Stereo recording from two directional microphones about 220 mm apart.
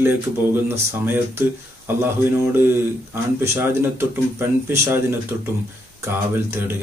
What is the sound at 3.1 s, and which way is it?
A man's voice, 10° right (ahead or behind).